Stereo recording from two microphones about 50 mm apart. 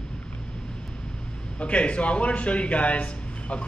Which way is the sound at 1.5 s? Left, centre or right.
Left.